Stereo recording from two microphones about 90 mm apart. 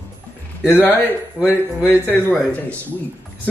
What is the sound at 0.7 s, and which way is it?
Speech, 20° left (ahead or behind).